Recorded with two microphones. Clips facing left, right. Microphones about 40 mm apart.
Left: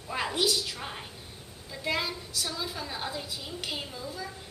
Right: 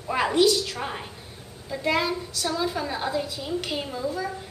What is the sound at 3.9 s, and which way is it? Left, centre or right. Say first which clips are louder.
Speech: right 10 dB; right.